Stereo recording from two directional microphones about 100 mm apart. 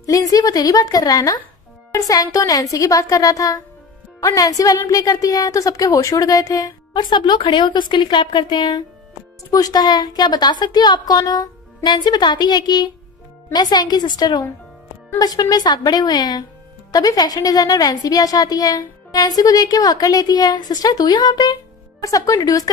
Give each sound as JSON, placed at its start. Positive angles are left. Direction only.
{"t": 0.0, "sound": "a woman's voice", "side_deg": 35}
{"t": 7.0, "sound": "a woman's voice", "side_deg": 50}